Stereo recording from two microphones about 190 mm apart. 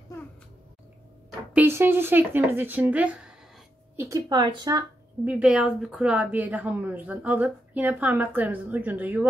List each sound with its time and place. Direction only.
1.5 s a woman's voice: 10° right (ahead or behind)
5.2 s a woman's voice: 5° right (ahead or behind)